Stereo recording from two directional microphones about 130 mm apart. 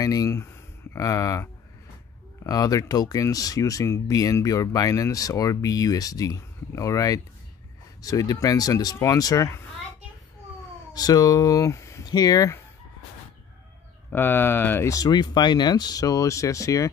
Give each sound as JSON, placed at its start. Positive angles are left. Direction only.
{"t": 0.0, "sound": "speech", "side_deg": 30}
{"t": 10.9, "sound": "speech", "side_deg": 30}
{"t": 14.1, "sound": "speech", "side_deg": 15}